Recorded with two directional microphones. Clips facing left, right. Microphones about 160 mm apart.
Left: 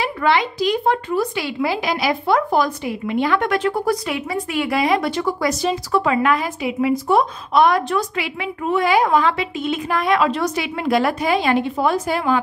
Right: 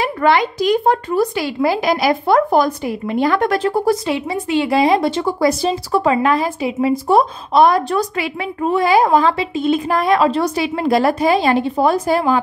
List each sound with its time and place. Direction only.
0.0 s speech: 45° right (ahead or behind)